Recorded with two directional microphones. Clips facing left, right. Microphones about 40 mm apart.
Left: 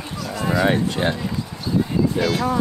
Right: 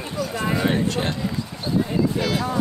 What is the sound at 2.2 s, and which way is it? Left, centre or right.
Speech, centre.